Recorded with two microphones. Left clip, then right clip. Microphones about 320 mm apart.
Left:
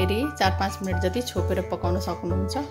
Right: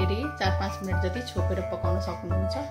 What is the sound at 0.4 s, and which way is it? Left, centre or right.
Speech, left.